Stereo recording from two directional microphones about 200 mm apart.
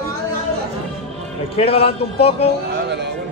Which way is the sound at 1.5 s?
30° left (ahead or behind).